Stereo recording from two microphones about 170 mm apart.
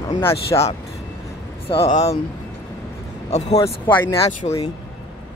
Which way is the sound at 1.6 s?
35° left (ahead or behind).